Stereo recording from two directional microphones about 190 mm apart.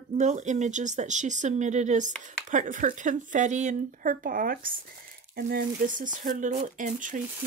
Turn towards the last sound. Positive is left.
turn(degrees=-45)  # may be behind; listen again after turning